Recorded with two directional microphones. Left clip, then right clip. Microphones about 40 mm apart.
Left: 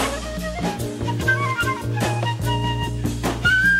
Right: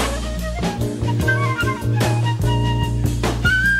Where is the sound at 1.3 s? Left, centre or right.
Right.